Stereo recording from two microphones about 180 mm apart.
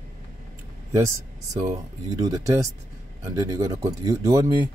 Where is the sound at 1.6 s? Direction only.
20° right (ahead or behind).